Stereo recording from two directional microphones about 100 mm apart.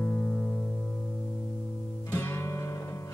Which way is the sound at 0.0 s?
15° left (ahead or behind).